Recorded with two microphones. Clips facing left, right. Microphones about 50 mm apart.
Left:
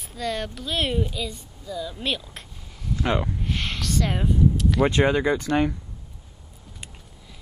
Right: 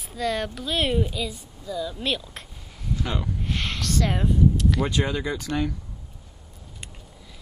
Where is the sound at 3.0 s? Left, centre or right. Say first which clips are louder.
Left 7 dB; left.